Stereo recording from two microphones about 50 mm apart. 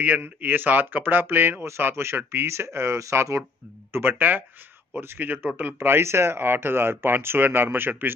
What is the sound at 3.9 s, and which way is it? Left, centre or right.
Speech, right.